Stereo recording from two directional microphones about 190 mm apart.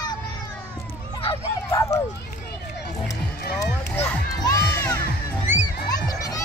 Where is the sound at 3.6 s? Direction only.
15° left (ahead or behind).